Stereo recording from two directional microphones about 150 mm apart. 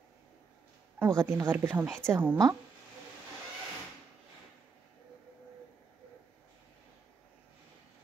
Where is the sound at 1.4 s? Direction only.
15° right (ahead or behind).